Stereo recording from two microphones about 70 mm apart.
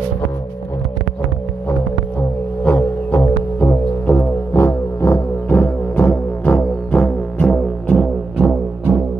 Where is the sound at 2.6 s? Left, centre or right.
Left.